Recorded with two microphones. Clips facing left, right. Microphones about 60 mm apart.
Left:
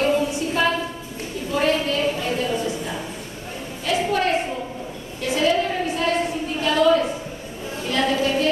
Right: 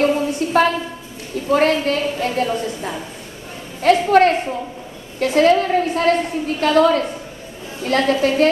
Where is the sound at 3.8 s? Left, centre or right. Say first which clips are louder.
Right 9 dB; right.